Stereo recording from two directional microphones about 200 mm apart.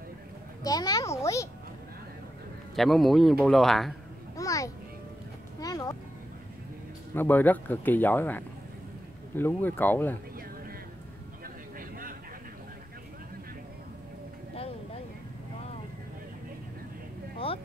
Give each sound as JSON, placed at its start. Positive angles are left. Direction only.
{"t": 0.7, "sound": "a sound", "side_deg": 20}
{"t": 2.7, "sound": "a man's voice", "side_deg": 0}
{"t": 4.4, "sound": "music", "side_deg": 15}
{"t": 7.2, "sound": "speech", "side_deg": 10}